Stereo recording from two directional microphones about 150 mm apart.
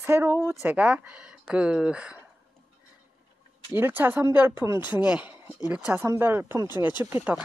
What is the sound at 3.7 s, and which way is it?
Speech, 15° right (ahead or behind).